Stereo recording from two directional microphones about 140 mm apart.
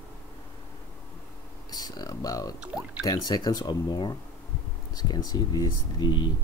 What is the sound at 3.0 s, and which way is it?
Speech, 30° left (ahead or behind).